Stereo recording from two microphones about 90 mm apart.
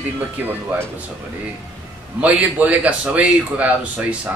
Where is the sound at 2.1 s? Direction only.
15° right (ahead or behind).